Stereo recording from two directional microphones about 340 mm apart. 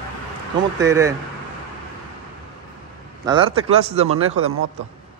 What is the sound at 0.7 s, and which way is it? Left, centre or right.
Speech, centre.